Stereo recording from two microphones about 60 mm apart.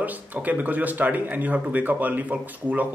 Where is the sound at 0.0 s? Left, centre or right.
Right.